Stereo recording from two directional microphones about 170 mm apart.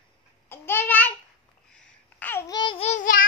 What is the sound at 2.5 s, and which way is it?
Babbling, 30° left (ahead or behind).